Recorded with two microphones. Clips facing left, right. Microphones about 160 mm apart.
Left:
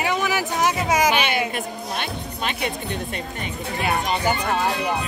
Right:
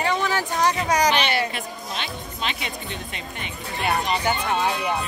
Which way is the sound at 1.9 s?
55° left (ahead or behind).